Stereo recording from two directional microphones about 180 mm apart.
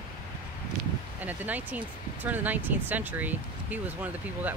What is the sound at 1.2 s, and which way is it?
Speech, 10° right (ahead or behind).